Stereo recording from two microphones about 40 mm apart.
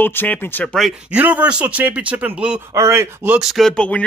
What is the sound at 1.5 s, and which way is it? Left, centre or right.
Speech, right.